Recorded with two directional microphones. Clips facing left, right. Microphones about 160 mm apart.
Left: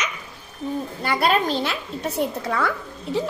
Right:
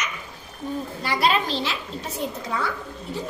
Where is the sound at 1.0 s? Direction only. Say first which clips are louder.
Left 2 dB; 50° left (ahead or behind).